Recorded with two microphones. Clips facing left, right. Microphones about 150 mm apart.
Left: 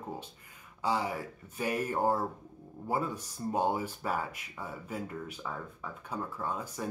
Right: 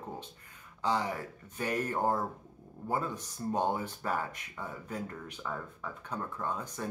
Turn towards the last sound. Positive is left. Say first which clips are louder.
# even
turn(degrees=5)  # may be behind; listen again after turning